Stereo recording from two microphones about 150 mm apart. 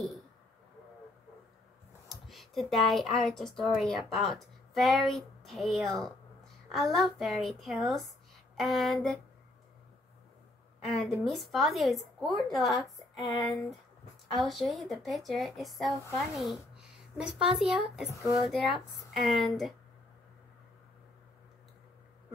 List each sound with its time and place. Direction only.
2.0 s a woman's voice: centre (ahead or behind)
11.0 s a woman's voice: centre (ahead or behind)